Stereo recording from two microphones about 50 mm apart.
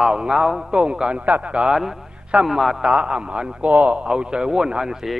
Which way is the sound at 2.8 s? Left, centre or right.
Centre.